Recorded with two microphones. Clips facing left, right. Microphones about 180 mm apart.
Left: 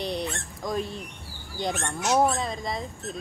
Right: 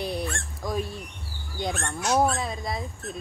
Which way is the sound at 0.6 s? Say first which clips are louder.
Even; 5° right (ahead or behind).